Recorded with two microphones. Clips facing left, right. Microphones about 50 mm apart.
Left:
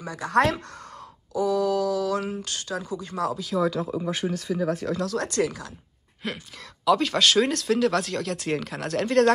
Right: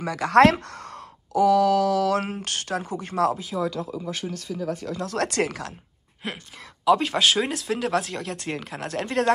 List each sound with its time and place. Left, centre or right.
0.0 s mantra: right
2.4 s speech: right
3.5 s speech: centre
3.9 s speech: centre
4.6 s speech: centre
5.4 s speech: right
6.2 s speech: centre